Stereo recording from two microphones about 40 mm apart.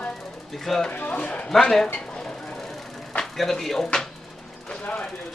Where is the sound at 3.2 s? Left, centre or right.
Centre.